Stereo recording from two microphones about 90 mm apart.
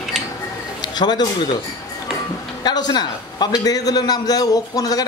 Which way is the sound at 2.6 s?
50° left (ahead or behind).